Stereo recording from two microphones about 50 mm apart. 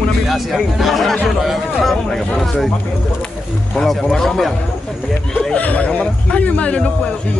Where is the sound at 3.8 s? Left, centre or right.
Centre.